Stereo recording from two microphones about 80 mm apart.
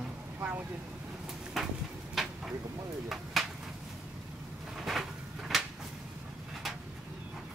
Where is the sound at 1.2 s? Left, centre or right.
Centre.